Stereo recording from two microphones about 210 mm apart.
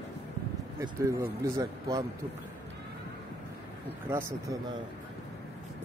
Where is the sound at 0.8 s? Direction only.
15° right (ahead or behind).